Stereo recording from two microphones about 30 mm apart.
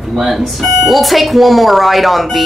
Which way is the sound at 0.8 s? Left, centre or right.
Centre.